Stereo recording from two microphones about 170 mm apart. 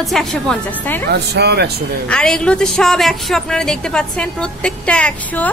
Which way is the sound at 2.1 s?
5° left (ahead or behind).